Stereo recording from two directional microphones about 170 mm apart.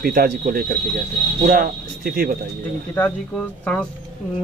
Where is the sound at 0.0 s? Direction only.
55° right (ahead or behind).